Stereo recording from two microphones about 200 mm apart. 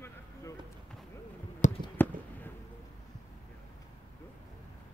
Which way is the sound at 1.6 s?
40° left (ahead or behind).